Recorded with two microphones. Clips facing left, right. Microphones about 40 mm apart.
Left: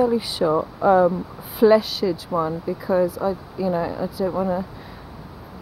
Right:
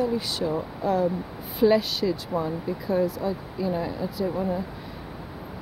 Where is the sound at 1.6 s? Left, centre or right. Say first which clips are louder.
Left 5 dB; centre.